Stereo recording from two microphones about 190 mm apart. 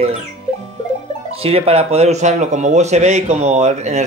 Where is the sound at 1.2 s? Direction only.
30° right (ahead or behind).